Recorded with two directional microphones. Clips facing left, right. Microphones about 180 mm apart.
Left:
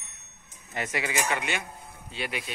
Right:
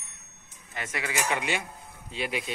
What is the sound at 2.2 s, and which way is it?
Speech, 20° right (ahead or behind).